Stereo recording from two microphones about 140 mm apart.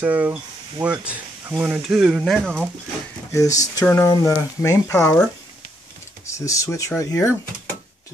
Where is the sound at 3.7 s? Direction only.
20° left (ahead or behind).